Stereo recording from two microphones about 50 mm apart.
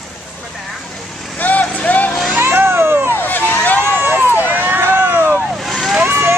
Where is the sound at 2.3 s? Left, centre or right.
Right.